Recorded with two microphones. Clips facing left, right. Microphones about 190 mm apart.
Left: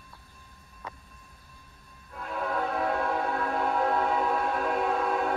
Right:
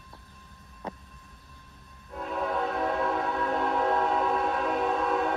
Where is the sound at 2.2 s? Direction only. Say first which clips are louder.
Right 1 dB; centre (ahead or behind).